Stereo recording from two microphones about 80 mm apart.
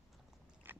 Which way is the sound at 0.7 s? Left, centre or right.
Right.